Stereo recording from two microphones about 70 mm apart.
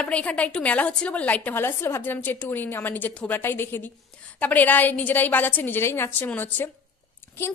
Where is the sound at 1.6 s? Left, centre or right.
Left.